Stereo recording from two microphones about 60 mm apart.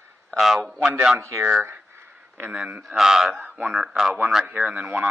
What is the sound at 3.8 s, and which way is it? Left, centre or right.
Speech, centre.